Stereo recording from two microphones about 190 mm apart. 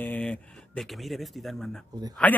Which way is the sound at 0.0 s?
5° left (ahead or behind).